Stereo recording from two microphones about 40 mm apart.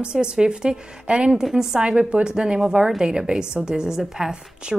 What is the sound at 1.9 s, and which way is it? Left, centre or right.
A woman's voice, right.